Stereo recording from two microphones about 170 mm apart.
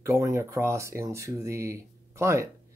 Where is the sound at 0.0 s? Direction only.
15° right (ahead or behind).